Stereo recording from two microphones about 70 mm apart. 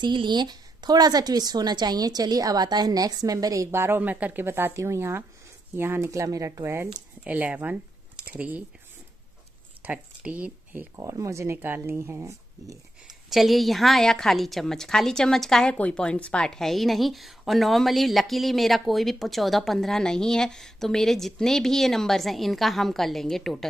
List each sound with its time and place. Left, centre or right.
0.0 s speech: right
3.7 s speech: right
6.2 s speech: right
6.6 s speech: right
7.2 s speech: right
9.8 s speech: right
11.0 s speech: right
11.5 s speech: right
12.0 s speech: right
13.0 s a woman's voice: centre